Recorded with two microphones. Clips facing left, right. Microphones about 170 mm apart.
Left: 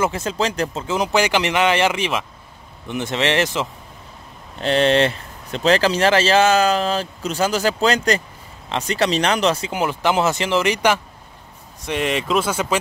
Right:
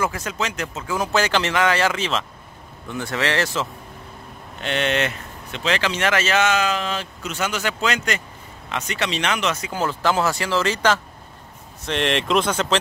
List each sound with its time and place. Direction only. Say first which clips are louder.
0.0 s speech: left 4 dB; 25° left (ahead or behind)
0.9 s speech: left 2 dB; 15° left (ahead or behind)
4.6 s speech: left 6 dB; 35° left (ahead or behind)
9.7 s speech: left 2 dB; 15° left (ahead or behind)